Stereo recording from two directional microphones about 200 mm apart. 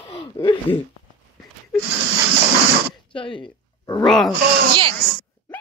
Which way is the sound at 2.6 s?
30° right (ahead or behind).